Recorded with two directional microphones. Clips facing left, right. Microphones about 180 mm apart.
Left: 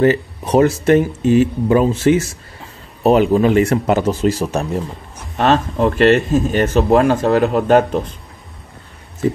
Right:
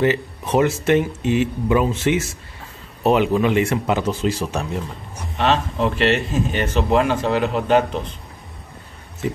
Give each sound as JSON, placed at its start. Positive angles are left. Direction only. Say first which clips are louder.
{"t": 0.0, "sound": "speech", "louder": "left 5 dB", "side_deg": 40}